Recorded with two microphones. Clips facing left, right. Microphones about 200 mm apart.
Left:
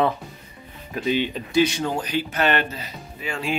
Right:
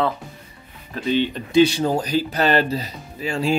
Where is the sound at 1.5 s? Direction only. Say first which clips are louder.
Right 5 dB; 30° right (ahead or behind).